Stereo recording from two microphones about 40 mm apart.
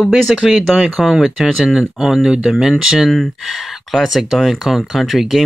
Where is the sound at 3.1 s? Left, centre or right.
Centre.